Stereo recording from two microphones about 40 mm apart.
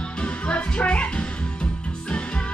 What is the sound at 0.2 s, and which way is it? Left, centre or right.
Music, left.